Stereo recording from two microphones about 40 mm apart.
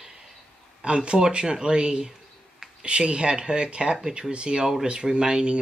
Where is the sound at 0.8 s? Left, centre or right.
Right.